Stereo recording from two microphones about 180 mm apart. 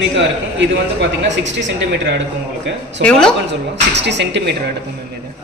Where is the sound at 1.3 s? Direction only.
85° right.